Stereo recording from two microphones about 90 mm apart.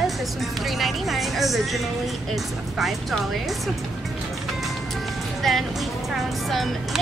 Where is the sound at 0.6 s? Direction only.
Centre (ahead or behind).